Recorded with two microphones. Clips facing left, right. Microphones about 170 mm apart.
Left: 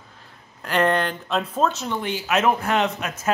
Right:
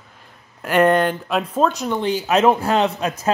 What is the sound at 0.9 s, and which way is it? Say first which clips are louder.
Speech: right 6 dB; 45° right (ahead or behind).